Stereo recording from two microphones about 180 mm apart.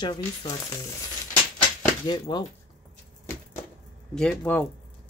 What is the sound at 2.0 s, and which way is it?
Speech, 25° left (ahead or behind).